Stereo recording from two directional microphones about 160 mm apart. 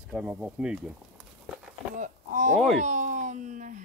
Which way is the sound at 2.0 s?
50° right (ahead or behind).